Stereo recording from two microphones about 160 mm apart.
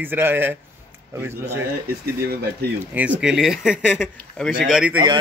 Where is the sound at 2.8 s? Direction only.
10° right (ahead or behind).